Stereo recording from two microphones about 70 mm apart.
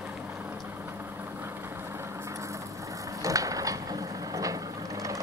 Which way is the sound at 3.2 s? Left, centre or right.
Right.